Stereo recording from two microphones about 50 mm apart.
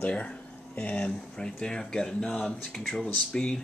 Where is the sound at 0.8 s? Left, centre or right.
Left.